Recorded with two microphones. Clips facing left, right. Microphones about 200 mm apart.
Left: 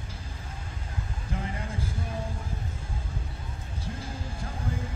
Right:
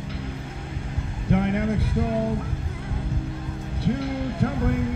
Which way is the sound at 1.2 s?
65° right (ahead or behind).